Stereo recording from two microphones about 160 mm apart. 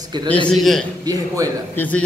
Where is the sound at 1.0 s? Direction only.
25° right (ahead or behind).